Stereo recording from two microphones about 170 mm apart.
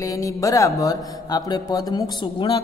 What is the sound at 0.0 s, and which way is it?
Speech, 20° left (ahead or behind).